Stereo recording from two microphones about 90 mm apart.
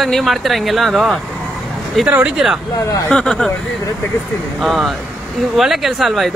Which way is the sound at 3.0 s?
10° left (ahead or behind).